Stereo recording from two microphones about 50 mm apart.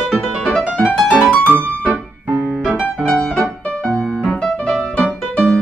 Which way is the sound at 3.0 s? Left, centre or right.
Left.